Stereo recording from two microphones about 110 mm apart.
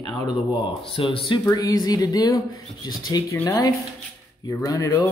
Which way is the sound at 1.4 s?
30° left (ahead or behind).